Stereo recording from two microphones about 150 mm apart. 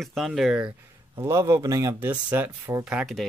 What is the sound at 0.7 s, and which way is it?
Speech, 20° right (ahead or behind).